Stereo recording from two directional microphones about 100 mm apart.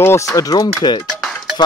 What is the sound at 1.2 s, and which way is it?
Music, 5° right (ahead or behind).